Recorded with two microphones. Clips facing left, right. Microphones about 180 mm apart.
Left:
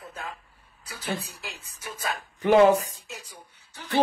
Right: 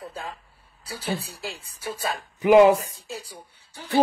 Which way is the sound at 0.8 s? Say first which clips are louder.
Right 3 dB; 30° right (ahead or behind).